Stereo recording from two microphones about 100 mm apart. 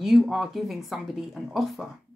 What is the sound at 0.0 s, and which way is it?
Speech, centre (ahead or behind).